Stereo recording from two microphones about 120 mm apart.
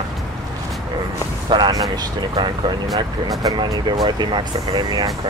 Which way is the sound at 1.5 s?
35° right (ahead or behind).